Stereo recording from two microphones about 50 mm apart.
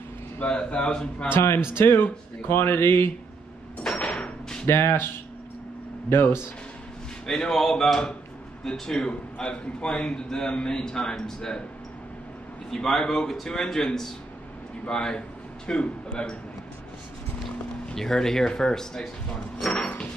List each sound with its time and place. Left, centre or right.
0.4 s speech: left
1.3 s speech: left
4.0 s door: left
4.6 s speech: left
6.0 s speech: left
7.2 s a man's voice: centre
12.7 s a man's voice: centre
14.9 s a man's voice: centre
17.9 s a man's voice: centre